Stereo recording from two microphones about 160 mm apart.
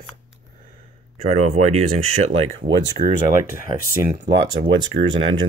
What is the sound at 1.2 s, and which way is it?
Speech, 45° right (ahead or behind).